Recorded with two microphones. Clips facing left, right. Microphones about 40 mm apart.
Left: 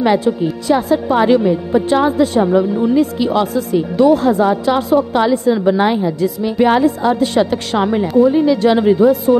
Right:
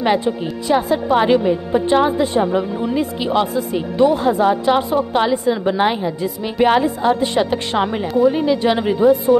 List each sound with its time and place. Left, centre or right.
0.0 s a woman's voice: centre